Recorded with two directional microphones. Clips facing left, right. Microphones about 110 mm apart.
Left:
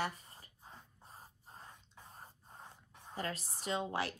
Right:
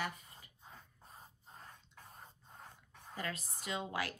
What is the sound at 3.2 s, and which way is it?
Speech, 35° left (ahead or behind).